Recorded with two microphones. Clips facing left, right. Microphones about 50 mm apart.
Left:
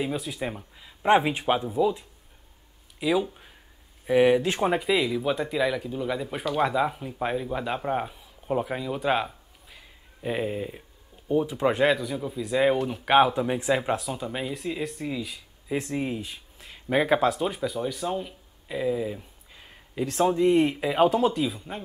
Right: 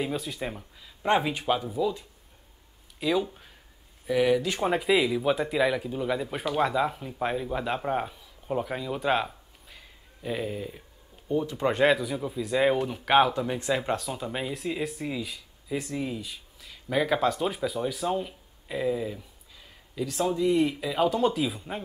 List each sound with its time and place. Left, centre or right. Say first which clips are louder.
0.0 s speech: left 1 dB; centre
0.7 s speech: left 4 dB; centre
3.0 s speech: left 2 dB; centre
4.0 s speech: left 4 dB; left
4.6 s speech: right 3 dB; centre
10.2 s speech: left 3 dB; left; by 15.4 s centre
15.7 s speech: left 3 dB; left
17.1 s speech: left 2 dB; centre
19.1 s a sound: left 2 dB; left
20.3 s speech: left 1 dB; left
21.2 s speech: left 1 dB; centre